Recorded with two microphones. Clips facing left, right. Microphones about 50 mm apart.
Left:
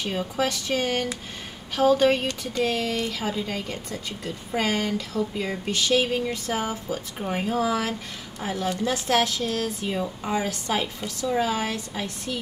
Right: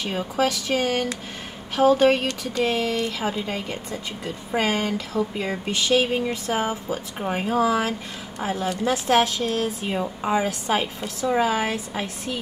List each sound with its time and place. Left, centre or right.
0.4 s speech: right
1.8 s speech: right
2.1 s speech: right
2.7 s speech: right
8.9 s speech: centre